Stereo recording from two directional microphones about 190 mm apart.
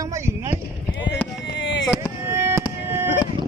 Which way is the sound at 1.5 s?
65° left (ahead or behind).